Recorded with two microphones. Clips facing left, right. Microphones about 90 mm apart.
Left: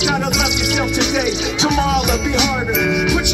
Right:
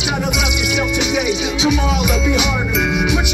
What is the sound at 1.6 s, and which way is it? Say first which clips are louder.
Music: left 2 dB; 45° left (ahead or behind).